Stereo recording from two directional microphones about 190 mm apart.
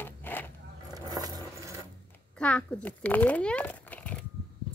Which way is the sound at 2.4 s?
5° left (ahead or behind).